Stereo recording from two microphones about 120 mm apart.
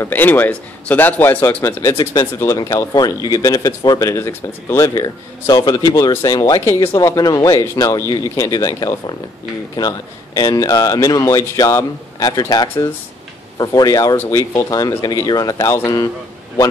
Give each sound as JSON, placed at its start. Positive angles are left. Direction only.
{"t": 0.0, "sound": "a man's voice", "side_deg": 15}
{"t": 6.6, "sound": "speech", "side_deg": 20}
{"t": 14.1, "sound": "speech", "side_deg": 20}
{"t": 14.5, "sound": "speech", "side_deg": 30}